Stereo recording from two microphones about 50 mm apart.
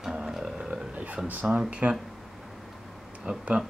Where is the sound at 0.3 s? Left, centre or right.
Centre.